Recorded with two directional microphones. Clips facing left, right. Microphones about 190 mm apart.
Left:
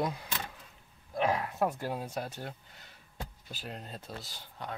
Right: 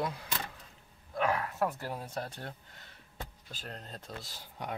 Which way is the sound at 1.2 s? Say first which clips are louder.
Left 1 dB; 15° left (ahead or behind).